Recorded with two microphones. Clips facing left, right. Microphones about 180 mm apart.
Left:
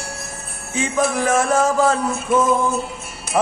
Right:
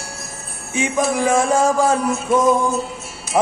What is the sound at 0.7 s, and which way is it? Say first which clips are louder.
Music: right 1 dB; 15° right (ahead or behind).